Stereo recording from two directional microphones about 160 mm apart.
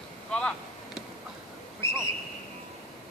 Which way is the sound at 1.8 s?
15° left (ahead or behind).